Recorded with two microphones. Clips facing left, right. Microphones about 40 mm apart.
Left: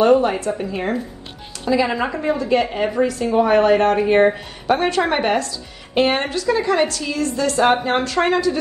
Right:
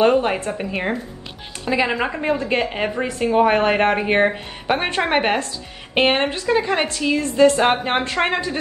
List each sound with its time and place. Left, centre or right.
0.0 s a woman's voice: right
2.2 s a woman's voice: right